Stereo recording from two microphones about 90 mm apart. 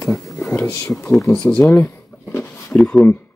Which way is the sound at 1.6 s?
25° left (ahead or behind).